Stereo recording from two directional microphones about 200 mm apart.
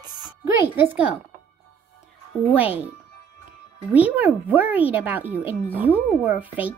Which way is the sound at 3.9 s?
5° right (ahead or behind).